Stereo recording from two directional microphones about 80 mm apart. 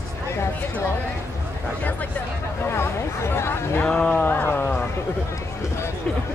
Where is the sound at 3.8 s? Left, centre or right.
Centre.